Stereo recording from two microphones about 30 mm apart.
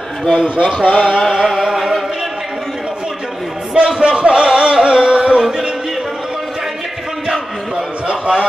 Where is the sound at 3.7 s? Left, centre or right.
Right.